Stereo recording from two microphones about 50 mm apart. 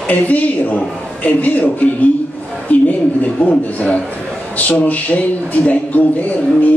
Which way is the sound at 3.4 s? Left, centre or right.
Left.